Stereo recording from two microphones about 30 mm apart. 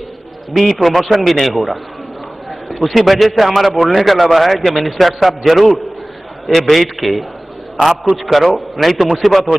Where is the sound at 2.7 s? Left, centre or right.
Centre.